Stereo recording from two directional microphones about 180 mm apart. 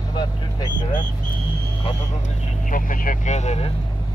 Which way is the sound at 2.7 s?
50° left (ahead or behind).